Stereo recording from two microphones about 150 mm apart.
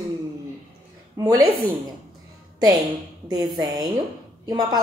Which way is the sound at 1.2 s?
25° right (ahead or behind).